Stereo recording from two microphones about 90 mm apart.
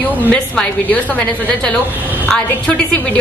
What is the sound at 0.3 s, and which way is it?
A woman's voice, 15° left (ahead or behind).